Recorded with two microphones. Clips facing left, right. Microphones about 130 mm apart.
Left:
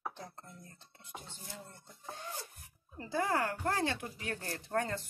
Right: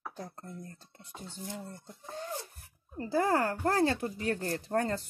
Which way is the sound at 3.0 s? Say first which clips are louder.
Right 5 dB; 35° right (ahead or behind).